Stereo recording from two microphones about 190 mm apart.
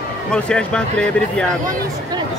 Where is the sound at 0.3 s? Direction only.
5° left (ahead or behind).